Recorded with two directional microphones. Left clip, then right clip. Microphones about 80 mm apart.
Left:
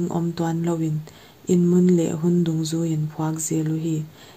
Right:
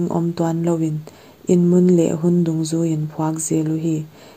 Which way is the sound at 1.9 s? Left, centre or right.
Right.